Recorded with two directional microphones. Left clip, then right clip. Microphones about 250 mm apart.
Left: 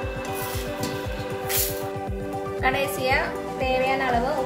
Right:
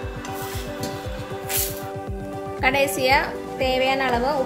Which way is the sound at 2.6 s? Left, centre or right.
Right.